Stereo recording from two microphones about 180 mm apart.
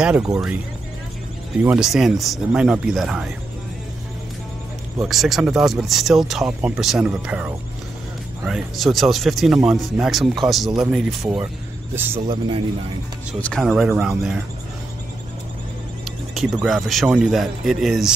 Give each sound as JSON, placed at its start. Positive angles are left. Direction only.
{"t": 1.6, "sound": "speech", "side_deg": -5}
{"t": 5.0, "sound": "speech", "side_deg": 0}
{"t": 12.3, "sound": "speech", "side_deg": -25}
{"t": 13.4, "sound": "speech", "side_deg": 5}
{"t": 16.6, "sound": "speech", "side_deg": 0}